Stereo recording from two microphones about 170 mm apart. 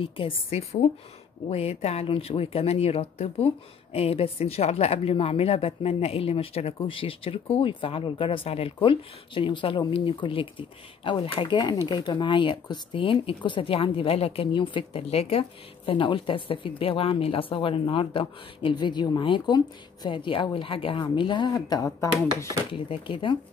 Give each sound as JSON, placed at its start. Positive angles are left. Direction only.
{"t": 0.0, "sound": "speech", "side_deg": 30}
{"t": 22.7, "sound": "speech", "side_deg": 30}